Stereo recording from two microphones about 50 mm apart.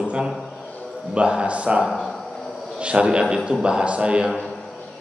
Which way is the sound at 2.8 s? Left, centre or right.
Right.